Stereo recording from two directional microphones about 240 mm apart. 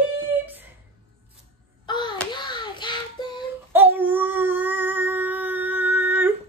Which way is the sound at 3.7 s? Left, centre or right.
Centre.